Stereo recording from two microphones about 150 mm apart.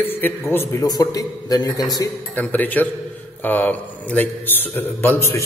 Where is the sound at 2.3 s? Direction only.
10° left (ahead or behind).